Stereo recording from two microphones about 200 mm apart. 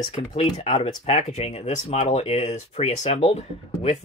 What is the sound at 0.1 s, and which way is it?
Speech, 30° left (ahead or behind).